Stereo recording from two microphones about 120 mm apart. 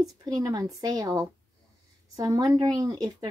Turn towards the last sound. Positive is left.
turn(degrees=-35)  # may be behind; listen again after turning